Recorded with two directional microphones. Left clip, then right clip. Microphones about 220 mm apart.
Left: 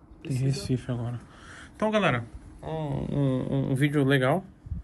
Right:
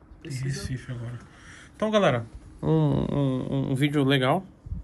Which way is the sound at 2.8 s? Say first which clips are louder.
Right 6 dB; 50° right (ahead or behind).